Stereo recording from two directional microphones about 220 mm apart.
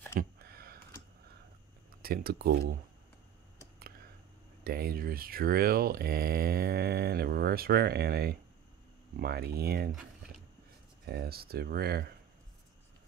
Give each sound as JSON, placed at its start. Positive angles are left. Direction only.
{"t": 0.2, "sound": "a sound", "side_deg": -45}
{"t": 2.0, "sound": "speech", "side_deg": -45}
{"t": 4.6, "sound": "speech", "side_deg": -45}
{"t": 11.1, "sound": "speech", "side_deg": -45}